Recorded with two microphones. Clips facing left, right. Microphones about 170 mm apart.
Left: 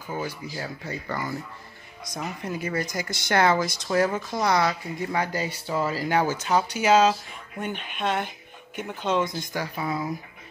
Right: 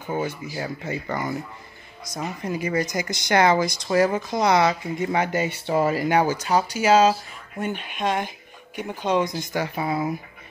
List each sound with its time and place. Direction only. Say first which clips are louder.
0.6 s speech: right 6 dB; 15° right (ahead or behind)